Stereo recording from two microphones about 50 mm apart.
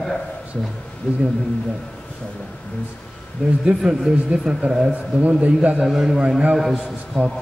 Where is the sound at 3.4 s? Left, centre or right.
Centre.